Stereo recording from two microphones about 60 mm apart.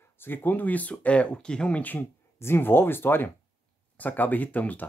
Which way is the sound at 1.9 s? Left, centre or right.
Left.